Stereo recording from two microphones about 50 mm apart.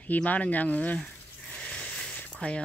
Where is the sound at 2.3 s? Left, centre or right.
Centre.